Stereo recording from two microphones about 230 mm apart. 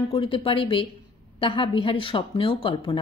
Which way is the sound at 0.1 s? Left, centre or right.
Left.